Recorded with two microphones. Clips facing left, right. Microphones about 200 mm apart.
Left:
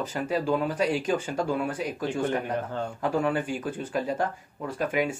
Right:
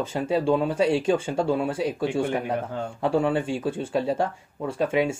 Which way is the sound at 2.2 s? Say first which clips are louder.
Right 2 dB; 10° right (ahead or behind).